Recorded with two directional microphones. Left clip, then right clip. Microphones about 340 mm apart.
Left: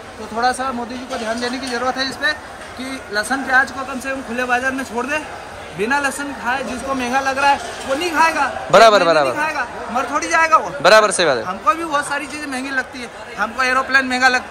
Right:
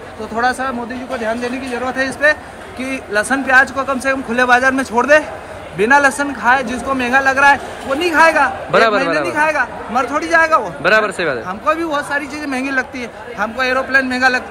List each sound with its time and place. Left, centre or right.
0.4 s speech: centre
3.2 s a man's voice: centre